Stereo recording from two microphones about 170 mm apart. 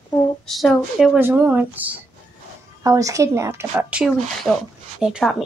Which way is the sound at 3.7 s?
5° right (ahead or behind).